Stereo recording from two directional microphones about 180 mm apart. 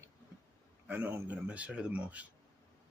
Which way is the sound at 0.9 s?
10° right (ahead or behind).